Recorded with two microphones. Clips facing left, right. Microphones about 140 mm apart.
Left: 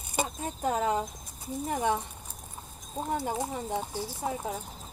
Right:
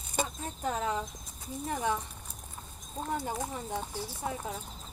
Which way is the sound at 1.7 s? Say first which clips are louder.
Left 3 dB; 25° left (ahead or behind).